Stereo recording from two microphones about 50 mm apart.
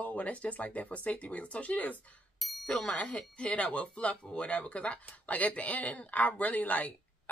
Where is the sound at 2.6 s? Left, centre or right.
Left.